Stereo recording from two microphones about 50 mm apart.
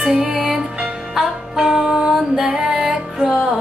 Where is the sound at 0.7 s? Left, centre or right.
Centre.